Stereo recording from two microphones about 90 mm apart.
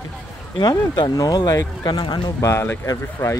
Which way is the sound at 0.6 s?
55° left (ahead or behind).